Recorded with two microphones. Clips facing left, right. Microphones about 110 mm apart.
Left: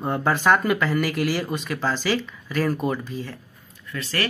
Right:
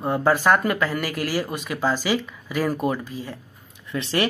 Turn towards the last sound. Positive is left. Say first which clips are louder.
# right 4 dB
turn(degrees=-25)  # may be behind; listen again after turning